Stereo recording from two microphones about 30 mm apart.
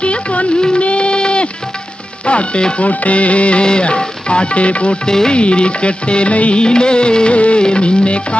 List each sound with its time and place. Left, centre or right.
0.0 s music of bollywood: left
2.2 s speech: left
2.8 s music: left
3.6 s music of bollywood: left
5.0 s music of bollywood: left
5.3 s music of bollywood: left
6.5 s music of bollywood: left
7.3 s music: left
7.6 s music of bollywood: left